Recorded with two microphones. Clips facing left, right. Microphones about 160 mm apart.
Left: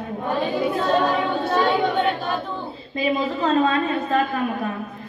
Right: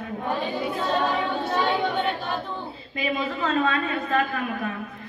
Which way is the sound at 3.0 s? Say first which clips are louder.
Left 5 dB; 35° left (ahead or behind).